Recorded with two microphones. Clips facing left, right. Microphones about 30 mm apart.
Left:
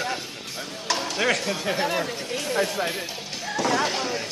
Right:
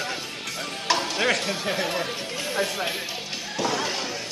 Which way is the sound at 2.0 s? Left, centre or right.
Centre.